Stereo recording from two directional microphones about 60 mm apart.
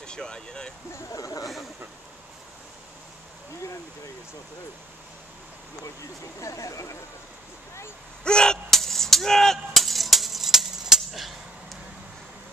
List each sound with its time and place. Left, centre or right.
0.0 s speech: centre
1.1 s speech: left
6.4 s speech: left
8.2 s a sound: centre